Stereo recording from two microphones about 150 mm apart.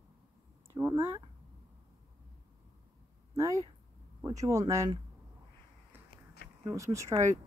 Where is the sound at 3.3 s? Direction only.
20° right (ahead or behind).